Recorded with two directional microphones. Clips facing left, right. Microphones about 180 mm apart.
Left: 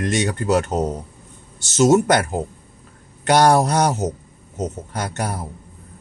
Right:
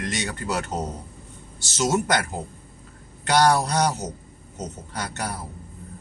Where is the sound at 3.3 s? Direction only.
50° left (ahead or behind).